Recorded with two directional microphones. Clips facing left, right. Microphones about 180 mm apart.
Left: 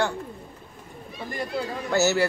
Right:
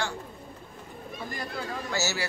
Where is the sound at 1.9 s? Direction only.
60° left (ahead or behind).